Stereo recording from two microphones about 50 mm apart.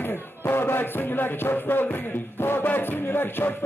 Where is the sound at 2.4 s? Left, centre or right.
Left.